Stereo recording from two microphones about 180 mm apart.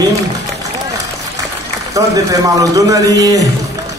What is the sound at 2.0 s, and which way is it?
A man's voice, 20° right (ahead or behind).